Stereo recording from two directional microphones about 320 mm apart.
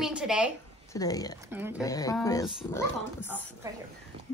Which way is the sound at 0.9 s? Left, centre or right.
Centre.